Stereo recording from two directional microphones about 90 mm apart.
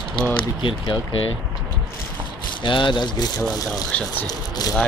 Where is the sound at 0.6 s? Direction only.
65° left (ahead or behind).